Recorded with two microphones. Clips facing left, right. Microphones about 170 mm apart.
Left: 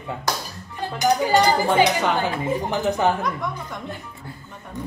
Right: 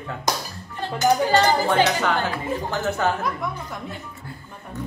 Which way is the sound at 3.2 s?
5° right (ahead or behind).